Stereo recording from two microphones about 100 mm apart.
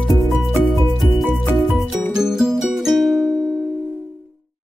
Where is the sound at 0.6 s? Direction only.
Centre (ahead or behind).